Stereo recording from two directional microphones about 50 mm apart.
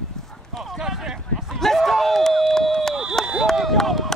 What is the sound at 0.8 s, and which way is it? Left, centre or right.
Speech, centre.